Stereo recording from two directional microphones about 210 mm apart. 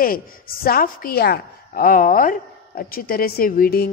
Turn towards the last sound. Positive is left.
turn(degrees=45)  # may be behind; listen again after turning